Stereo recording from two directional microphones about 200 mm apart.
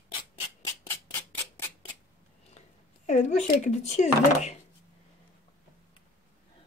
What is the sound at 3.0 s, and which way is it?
Speech, 35° left (ahead or behind).